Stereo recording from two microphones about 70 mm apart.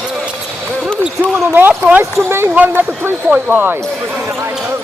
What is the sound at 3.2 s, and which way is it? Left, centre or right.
Speech, centre.